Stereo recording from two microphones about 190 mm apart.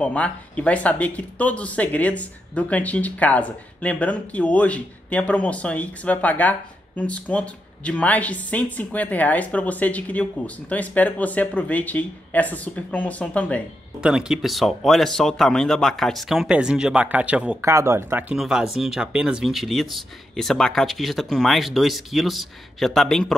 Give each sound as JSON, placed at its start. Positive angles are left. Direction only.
{"t": 0.0, "sound": "speech", "side_deg": 5}
{"t": 14.0, "sound": "speech", "side_deg": -5}